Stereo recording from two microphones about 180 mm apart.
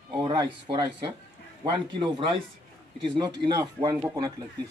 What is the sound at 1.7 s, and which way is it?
Speech, 25° right (ahead or behind).